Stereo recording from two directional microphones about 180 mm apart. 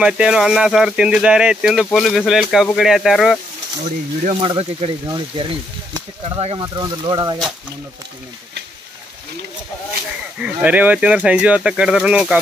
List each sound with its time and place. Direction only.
0.0 s speech: 5° right (ahead or behind)
3.8 s speech: 40° right (ahead or behind)
10.4 s speech: 10° right (ahead or behind)